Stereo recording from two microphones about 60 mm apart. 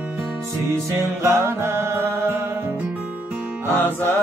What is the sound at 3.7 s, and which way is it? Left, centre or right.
Music, left.